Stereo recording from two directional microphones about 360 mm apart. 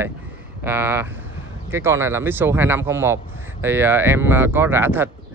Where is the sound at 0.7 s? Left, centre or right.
Centre.